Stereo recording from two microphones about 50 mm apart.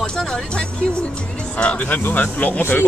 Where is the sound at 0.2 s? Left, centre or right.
Centre.